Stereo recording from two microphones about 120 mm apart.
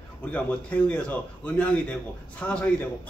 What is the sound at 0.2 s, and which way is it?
A man's voice, 10° left (ahead or behind).